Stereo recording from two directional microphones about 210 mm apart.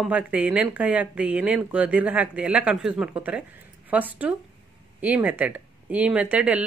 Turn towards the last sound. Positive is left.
turn(degrees=-5)  # may be behind; listen again after turning